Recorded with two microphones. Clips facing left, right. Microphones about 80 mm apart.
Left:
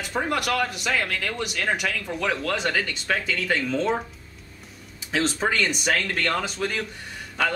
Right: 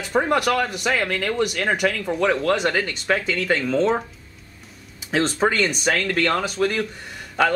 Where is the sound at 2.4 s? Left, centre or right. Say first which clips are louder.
Right 5 dB; right.